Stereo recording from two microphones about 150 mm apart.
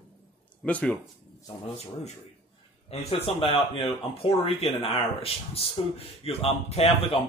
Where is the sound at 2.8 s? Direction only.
40° left (ahead or behind).